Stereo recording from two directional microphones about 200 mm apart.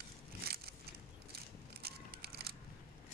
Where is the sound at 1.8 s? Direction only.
50° right (ahead or behind).